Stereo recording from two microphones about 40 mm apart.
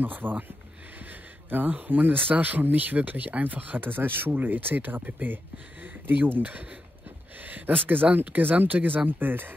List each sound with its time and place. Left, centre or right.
0.0 s speech: right
1.5 s speech: right
6.4 s speech: right
7.3 s a sound: right
7.9 s speech: right